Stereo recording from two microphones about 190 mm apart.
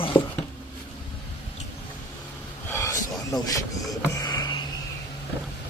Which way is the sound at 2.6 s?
15° left (ahead or behind).